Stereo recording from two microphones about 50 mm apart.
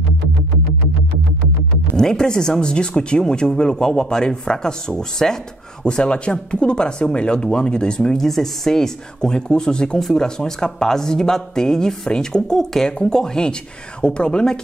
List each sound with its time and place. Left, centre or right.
2.0 s speech: centre